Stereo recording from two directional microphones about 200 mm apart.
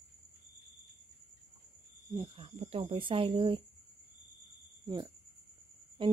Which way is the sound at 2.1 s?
25° right (ahead or behind).